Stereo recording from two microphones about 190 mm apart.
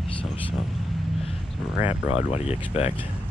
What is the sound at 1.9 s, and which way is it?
Speech, 30° left (ahead or behind).